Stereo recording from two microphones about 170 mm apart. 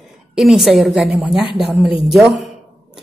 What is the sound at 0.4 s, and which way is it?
A woman's voice, centre (ahead or behind).